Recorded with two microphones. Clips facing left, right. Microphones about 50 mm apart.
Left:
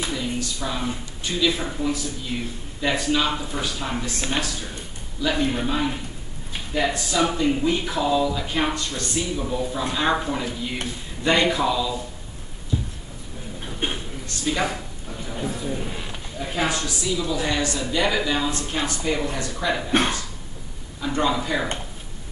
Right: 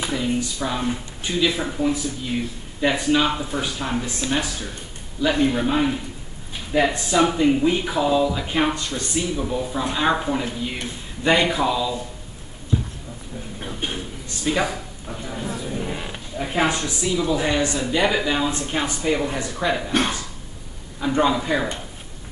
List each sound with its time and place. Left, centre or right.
0.0 s speech: centre
5.4 s speech: centre
12.7 s clip-clop: centre
13.8 s a sound: left
14.2 s a sound: centre
15.6 s speech: centre
19.9 s speech: left
21.0 s speech: centre